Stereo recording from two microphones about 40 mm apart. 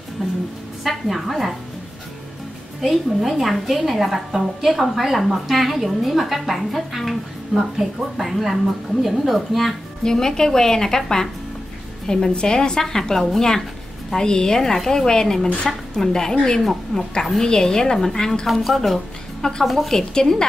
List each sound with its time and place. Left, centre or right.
0.2 s a sound: centre
0.8 s a woman's voice: centre
2.8 s a woman's voice: centre
7.5 s a woman's voice: centre
10.0 s a woman's voice: centre
16.9 s a woman's voice: left
17.4 s a woman's voice: centre
19.9 s a woman's voice: centre